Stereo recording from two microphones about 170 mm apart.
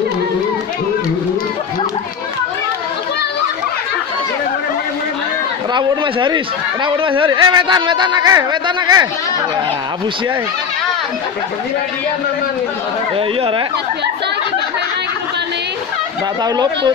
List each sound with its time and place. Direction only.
5.8 s speech: 30° right (ahead or behind)
16.4 s speech: 25° right (ahead or behind)